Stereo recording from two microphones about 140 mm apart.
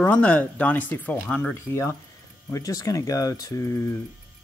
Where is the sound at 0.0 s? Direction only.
10° left (ahead or behind).